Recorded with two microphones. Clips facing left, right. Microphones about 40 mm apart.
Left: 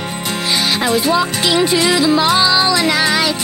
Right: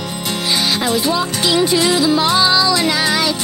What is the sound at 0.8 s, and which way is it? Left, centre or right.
Music, left.